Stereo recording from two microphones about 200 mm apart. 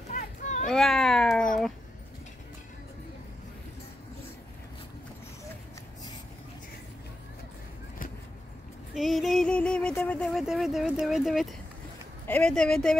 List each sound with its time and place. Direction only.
0.1 s a sound: 40° left (ahead or behind)
0.7 s cat: centre (ahead or behind)
8.9 s speech: centre (ahead or behind)